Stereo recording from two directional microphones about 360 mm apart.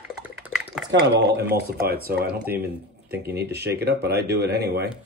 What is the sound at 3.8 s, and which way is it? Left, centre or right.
Speech, right.